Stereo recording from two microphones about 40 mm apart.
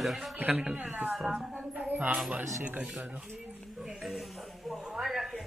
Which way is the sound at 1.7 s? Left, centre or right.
Right.